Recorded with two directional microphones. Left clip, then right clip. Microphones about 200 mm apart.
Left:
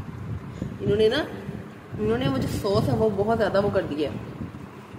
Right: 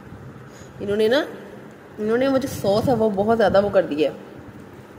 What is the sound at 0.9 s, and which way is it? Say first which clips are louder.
A woman's voice: right 2 dB; 35° right (ahead or behind).